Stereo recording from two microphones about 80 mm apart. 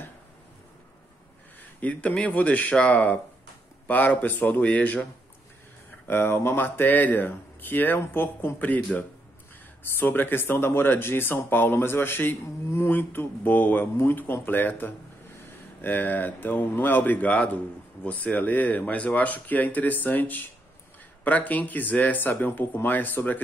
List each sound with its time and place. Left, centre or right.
1.6 s speech: centre
6.0 s speech: left
9.9 s speech: left